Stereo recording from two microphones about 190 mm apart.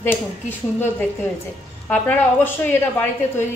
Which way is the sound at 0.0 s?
10° left (ahead or behind).